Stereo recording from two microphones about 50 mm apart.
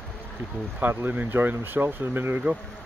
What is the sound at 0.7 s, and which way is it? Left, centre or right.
Speech, right.